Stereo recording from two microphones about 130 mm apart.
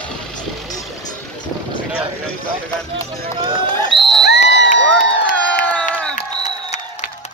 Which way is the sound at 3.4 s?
40° right (ahead or behind).